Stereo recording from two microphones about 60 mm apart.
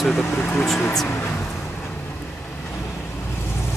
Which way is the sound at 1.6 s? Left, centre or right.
Left.